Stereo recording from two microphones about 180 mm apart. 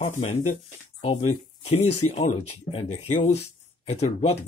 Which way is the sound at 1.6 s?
40° left (ahead or behind).